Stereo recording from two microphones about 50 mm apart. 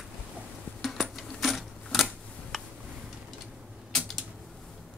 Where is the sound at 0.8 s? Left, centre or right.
Centre.